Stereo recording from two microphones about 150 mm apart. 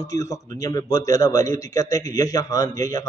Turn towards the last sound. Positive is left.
turn(degrees=25)  # may be behind; listen again after turning